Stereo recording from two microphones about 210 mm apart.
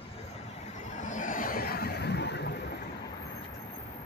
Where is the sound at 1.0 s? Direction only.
40° left (ahead or behind); by 2.6 s 55° left (ahead or behind).